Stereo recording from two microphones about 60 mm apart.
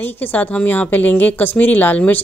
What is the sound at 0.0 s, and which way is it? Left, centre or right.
Speech, left.